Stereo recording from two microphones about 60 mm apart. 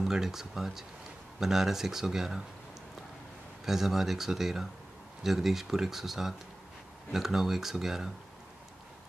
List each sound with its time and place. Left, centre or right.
0.0 s speech: centre
3.6 s speech: centre